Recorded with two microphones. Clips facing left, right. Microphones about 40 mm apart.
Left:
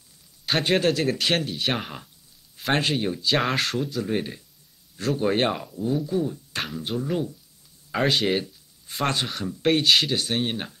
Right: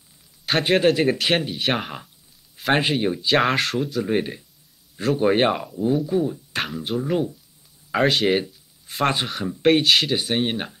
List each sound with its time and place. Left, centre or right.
0.5 s a man's voice: centre
0.7 s speech: centre
3.3 s speech: centre
4.0 s speech: centre
7.0 s speech: centre
7.9 s speech: centre
8.8 s a sound: centre
9.1 s speech: centre
10.1 s speech: centre